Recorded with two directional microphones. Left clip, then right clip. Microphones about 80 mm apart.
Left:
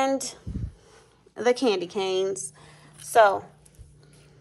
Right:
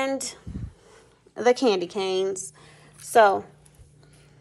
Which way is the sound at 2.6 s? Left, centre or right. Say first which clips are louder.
Even; centre.